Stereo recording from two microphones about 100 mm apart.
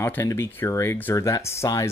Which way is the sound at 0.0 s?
25° left (ahead or behind).